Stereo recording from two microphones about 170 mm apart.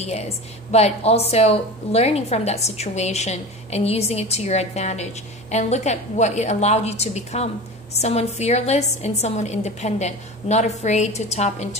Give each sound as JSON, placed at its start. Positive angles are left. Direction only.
{"t": 0.0, "sound": "a woman's voice", "side_deg": 40}